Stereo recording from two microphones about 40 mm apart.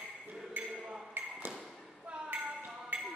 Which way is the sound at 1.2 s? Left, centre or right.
Right.